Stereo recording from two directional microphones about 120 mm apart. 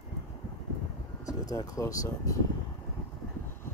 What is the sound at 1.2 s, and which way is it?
Speech, 30° left (ahead or behind).